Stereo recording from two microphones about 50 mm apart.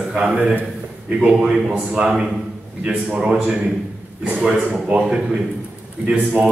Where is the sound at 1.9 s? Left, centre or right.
Right.